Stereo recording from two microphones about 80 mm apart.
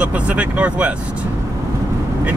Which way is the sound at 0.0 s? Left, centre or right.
Centre.